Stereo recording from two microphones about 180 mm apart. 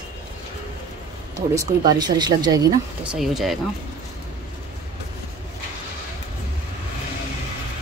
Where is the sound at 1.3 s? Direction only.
15° right (ahead or behind).